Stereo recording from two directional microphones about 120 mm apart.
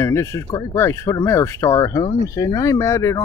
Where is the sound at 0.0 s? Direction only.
20° left (ahead or behind).